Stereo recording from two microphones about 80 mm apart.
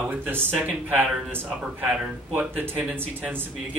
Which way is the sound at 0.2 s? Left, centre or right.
Right.